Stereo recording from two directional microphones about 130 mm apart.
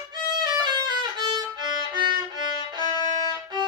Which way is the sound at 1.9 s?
35° right (ahead or behind).